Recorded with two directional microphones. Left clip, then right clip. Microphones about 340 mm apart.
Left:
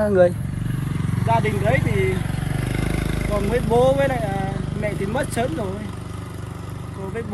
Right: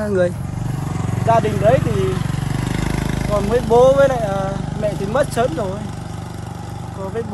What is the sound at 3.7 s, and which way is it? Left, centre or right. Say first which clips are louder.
Speech: right 6 dB; centre.